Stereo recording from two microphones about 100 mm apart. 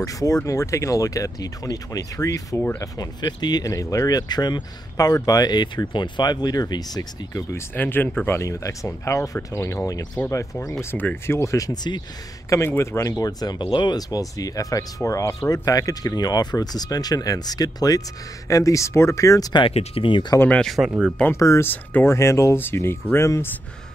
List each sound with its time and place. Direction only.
0.0 s speech: 35° left (ahead or behind)
7.5 s speech: 20° left (ahead or behind)
8.3 s speech: 30° left (ahead or behind)
10.9 s speech: 20° left (ahead or behind); by 12.0 s 45° left (ahead or behind)
12.4 s speech: 25° left (ahead or behind)
19.7 s speech: 85° left; by 20.3 s 55° left (ahead or behind)
20.3 s speech: 10° left (ahead or behind)
21.3 s speech: 30° left (ahead or behind)